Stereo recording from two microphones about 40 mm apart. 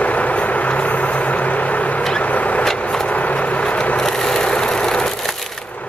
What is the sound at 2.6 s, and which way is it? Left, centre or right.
Vehicle, centre.